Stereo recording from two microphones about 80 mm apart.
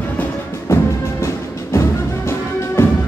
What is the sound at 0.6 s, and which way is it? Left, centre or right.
Music, left.